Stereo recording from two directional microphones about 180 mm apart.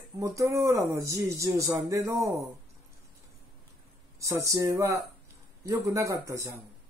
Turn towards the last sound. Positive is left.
turn(degrees=-15)  # may be behind; listen again after turning